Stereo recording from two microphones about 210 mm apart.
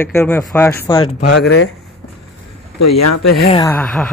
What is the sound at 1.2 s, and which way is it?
Speech, 55° left (ahead or behind).